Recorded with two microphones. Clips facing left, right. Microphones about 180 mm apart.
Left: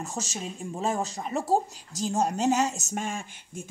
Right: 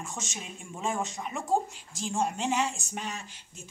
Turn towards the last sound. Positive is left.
turn(degrees=45)  # may be behind; listen again after turning